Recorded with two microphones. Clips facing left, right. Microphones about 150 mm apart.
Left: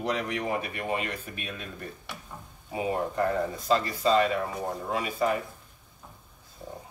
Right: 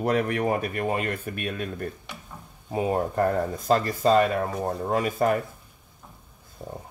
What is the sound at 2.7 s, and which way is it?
Speech, 45° right (ahead or behind).